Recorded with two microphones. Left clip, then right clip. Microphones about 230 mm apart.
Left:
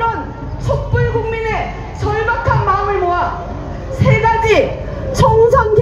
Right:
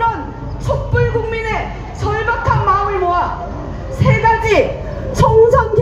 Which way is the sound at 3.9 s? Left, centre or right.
Right.